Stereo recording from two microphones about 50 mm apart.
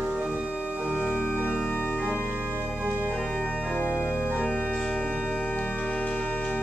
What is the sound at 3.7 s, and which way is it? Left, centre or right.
Organ, left.